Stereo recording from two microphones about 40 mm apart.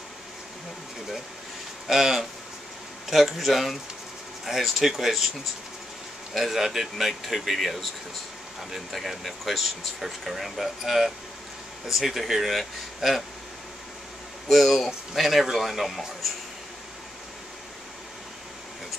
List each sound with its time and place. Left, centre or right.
1.9 s speech: centre
6.3 s speech: centre
14.5 s speech: centre